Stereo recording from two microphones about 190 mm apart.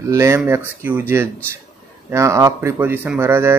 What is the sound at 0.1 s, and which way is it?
Speech, 15° right (ahead or behind).